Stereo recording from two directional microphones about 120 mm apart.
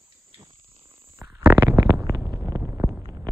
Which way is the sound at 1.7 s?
30° right (ahead or behind).